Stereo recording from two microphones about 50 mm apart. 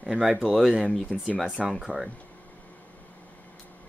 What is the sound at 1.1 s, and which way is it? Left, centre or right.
Speech, right.